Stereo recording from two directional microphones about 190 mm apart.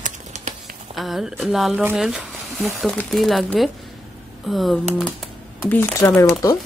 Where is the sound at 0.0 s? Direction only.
40° right (ahead or behind).